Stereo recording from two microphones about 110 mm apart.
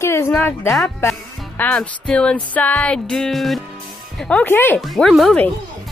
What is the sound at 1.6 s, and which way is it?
Music, 10° left (ahead or behind).